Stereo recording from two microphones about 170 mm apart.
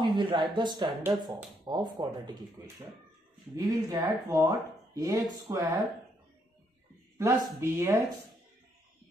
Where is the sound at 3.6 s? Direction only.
20° right (ahead or behind).